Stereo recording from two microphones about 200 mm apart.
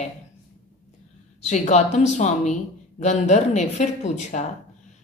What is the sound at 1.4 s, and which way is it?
A woman's voice, 35° left (ahead or behind).